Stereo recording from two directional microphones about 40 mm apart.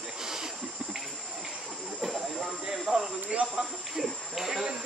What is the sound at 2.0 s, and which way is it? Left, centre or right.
Hiss, centre.